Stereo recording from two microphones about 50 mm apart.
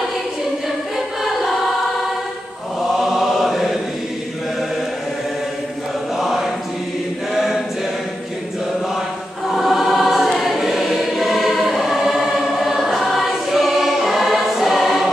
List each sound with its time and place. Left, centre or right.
0.9 s choir: centre
2.8 s chant: centre
6.1 s choir: centre
9.6 s choir: centre